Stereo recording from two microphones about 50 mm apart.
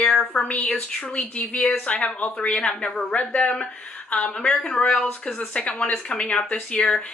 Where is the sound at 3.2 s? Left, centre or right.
Left.